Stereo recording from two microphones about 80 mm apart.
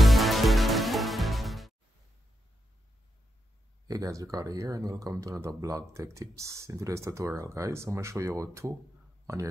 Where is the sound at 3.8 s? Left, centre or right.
Right.